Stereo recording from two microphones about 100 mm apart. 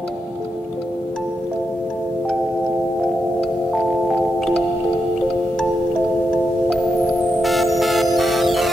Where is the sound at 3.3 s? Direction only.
Centre (ahead or behind).